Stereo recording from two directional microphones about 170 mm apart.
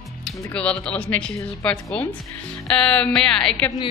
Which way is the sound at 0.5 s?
5° left (ahead or behind).